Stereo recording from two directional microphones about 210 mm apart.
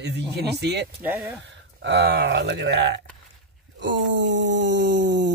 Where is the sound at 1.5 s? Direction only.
55° right (ahead or behind).